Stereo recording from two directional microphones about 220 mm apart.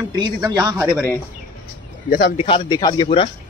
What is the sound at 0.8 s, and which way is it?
Speech, centre (ahead or behind).